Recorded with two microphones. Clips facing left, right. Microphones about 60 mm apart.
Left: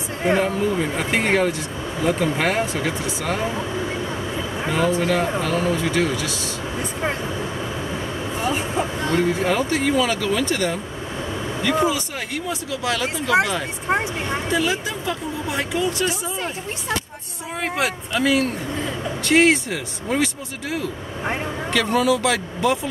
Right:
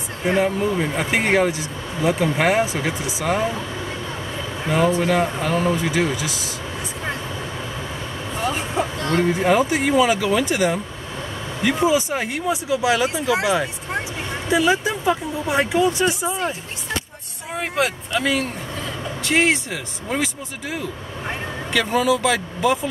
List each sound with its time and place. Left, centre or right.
0.4 s speech: centre
4.6 s speech: centre
8.4 s vehicle: centre
9.2 s speech: centre
14.5 s speech: right
17.6 s speech: centre
21.7 s speech: centre